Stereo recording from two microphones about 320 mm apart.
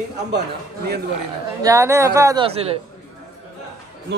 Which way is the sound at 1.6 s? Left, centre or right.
Centre.